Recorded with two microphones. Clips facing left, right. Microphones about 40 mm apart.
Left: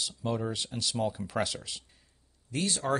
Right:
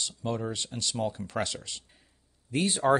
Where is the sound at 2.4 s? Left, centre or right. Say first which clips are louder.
Right 5 dB; right.